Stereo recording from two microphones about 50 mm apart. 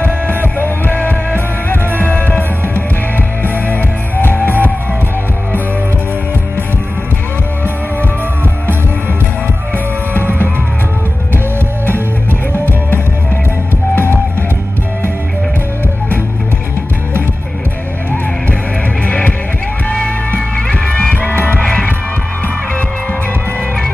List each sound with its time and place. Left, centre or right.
0.3 s music: left
19.0 s music: left
20.5 s music: centre